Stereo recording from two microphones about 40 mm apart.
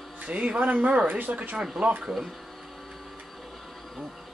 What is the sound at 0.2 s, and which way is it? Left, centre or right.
Speech, right.